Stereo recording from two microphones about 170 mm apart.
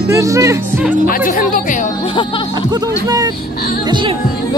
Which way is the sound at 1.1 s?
55° left (ahead or behind).